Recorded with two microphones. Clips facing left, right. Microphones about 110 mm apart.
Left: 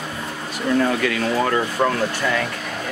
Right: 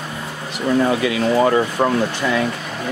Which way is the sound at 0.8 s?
15° right (ahead or behind).